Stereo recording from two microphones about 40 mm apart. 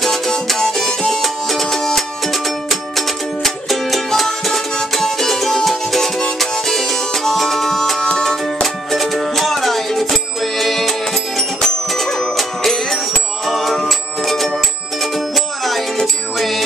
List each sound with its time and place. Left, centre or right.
0.0 s music: centre
8.9 s music: centre